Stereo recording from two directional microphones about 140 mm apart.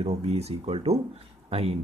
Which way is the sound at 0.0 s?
45° right (ahead or behind).